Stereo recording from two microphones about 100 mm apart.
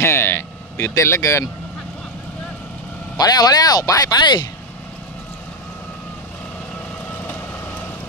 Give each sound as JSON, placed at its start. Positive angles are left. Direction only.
{"t": 0.0, "sound": "speech", "side_deg": 25}
{"t": 3.2, "sound": "speech", "side_deg": 40}